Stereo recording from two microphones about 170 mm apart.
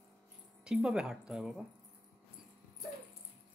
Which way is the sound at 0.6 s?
5° right (ahead or behind).